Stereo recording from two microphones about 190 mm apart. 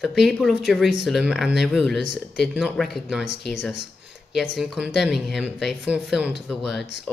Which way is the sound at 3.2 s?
65° left (ahead or behind).